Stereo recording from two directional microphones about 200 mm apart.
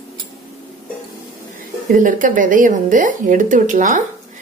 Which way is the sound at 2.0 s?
40° right (ahead or behind).